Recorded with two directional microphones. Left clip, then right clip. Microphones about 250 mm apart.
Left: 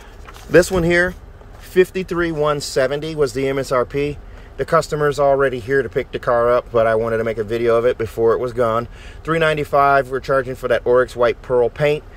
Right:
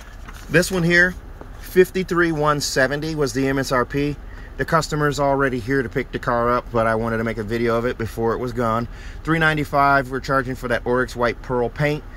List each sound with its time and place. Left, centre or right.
0.5 s speech: centre